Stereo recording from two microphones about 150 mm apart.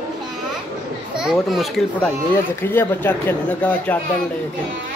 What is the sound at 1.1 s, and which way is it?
Speech, 5° right (ahead or behind).